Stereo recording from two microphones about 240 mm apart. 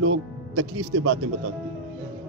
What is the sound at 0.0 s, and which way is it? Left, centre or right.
Speech, right.